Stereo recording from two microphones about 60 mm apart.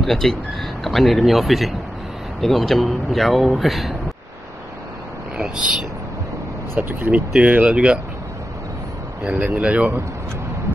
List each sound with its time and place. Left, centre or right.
0.0 s speech: centre
6.7 s speech: right
7.1 s speech: centre
9.2 s speech: right